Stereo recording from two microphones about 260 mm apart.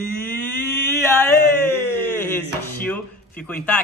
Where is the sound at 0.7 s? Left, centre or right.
Centre.